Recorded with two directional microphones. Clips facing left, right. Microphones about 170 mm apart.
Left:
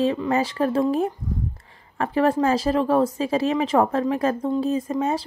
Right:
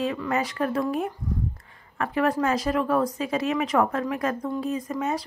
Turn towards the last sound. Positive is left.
turn(degrees=30)  # may be behind; listen again after turning